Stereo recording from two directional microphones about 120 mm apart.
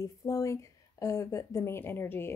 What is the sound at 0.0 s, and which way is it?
A woman's voice, 30° left (ahead or behind).